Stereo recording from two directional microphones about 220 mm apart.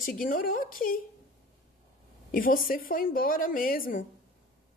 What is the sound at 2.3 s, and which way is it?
A woman's voice, 40° left (ahead or behind).